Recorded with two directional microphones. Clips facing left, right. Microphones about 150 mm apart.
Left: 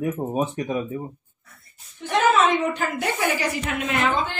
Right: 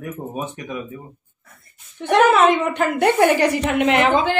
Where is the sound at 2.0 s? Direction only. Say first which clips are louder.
Right 5 dB; 65° right (ahead or behind); by 4.4 s 85° right.